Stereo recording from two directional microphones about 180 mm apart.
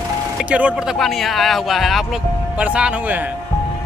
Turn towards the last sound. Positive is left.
turn(degrees=-5)  # may be behind; listen again after turning